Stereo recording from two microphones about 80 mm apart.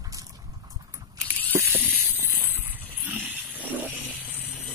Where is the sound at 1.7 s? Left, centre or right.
Right.